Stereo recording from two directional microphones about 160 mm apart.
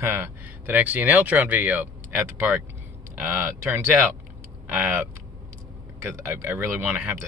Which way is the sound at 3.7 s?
15° right (ahead or behind).